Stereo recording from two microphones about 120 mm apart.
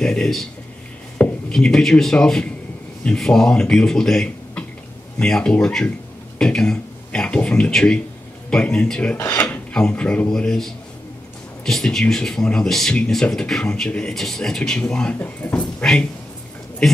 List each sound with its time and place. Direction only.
0.0 s speech: 5° left (ahead or behind)
1.5 s a man's voice: 5° left (ahead or behind)
9.2 s speech: 20° left (ahead or behind)
9.7 s a man's voice: 5° left (ahead or behind)